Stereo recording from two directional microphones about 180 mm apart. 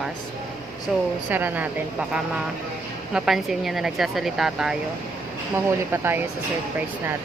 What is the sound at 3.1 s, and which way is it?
Speech, centre (ahead or behind).